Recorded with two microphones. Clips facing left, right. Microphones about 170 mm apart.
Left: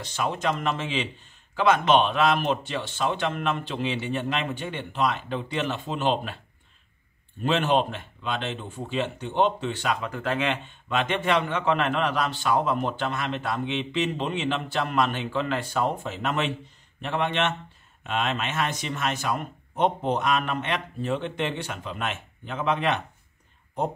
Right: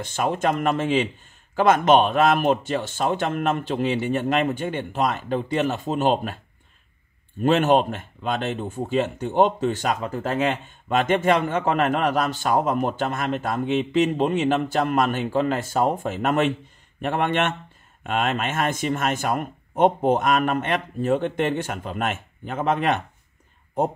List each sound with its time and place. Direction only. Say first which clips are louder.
0.0 s speech: right 4 dB; 50° right (ahead or behind)
7.4 s speech: right 5 dB; 45° right (ahead or behind)